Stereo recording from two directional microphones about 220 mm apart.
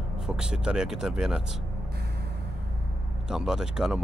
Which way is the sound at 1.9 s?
45° right (ahead or behind).